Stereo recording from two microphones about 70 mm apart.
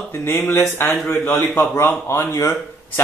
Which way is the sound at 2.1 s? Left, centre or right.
Left.